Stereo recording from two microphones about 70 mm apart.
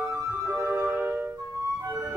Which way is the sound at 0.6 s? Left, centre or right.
Right.